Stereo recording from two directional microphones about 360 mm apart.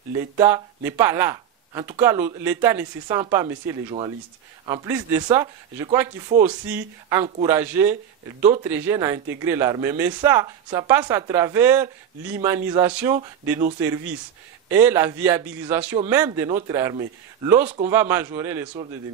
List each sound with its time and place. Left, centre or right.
0.4 s a man's voice: centre